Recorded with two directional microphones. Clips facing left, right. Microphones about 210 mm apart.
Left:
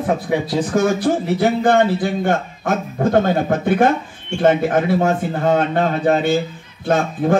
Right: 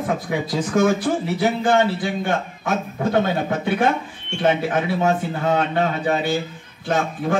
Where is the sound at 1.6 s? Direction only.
55° left (ahead or behind).